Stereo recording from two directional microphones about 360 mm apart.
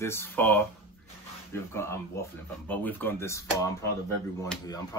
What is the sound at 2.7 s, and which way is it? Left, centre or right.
Speech, centre.